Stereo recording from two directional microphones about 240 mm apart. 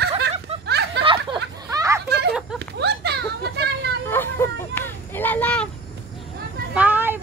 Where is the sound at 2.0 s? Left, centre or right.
Right.